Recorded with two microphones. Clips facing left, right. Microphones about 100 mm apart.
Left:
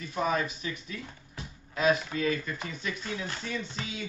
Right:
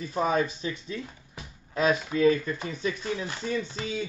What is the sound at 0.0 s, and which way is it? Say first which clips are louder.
Speech: right 4 dB; 35° right (ahead or behind).